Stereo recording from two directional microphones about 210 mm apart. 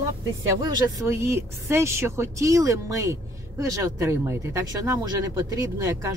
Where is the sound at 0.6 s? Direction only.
15° right (ahead or behind).